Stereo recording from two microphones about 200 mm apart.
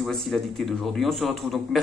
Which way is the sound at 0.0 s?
Centre (ahead or behind).